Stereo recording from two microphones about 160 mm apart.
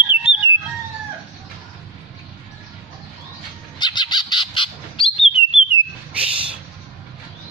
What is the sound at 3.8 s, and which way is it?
Bird, 25° left (ahead or behind).